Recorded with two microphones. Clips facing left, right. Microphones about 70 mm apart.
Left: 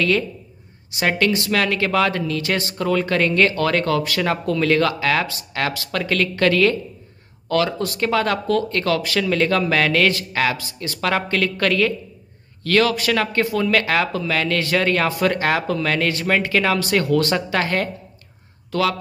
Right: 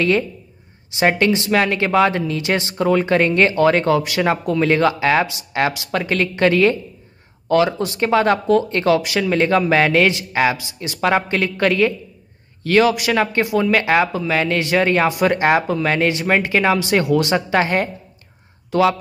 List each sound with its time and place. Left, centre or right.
0.9 s speech: right